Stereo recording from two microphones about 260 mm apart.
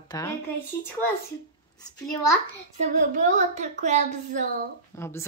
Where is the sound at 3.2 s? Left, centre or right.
Right.